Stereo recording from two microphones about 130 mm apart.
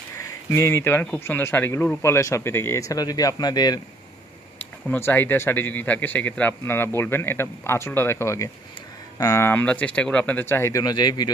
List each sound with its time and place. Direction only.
0.2 s speech: 20° left (ahead or behind)
4.8 s a man's voice: 15° left (ahead or behind); by 11.3 s 30° left (ahead or behind)